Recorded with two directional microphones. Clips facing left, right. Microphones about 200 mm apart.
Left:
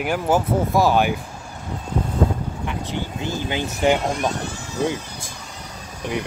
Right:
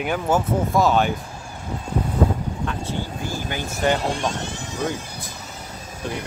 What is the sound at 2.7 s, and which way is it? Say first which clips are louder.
Vehicle: even; 15° left (ahead or behind).